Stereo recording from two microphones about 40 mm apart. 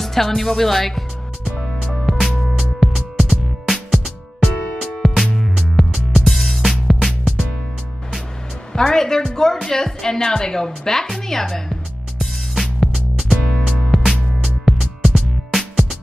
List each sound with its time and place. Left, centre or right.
0.0 s speech: centre
2.0 s music: centre
8.7 s speech: centre
9.7 s music: centre